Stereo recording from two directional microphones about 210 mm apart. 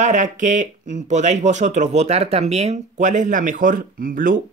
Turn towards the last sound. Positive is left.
turn(degrees=-40)  # may be behind; listen again after turning